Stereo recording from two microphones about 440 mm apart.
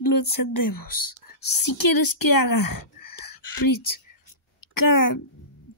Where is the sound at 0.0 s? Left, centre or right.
Left.